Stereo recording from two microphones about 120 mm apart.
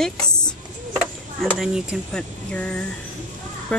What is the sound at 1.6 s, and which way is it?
Speech, 5° right (ahead or behind).